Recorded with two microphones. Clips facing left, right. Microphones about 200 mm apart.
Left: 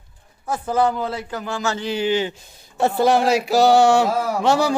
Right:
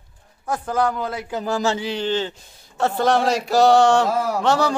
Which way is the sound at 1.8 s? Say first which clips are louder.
Left 2 dB; 5° left (ahead or behind).